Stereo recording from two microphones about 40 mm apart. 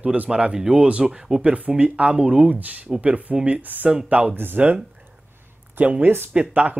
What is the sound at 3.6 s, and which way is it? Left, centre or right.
Speech, right.